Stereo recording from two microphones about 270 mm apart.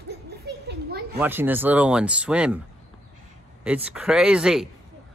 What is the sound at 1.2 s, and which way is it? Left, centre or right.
Speech, centre.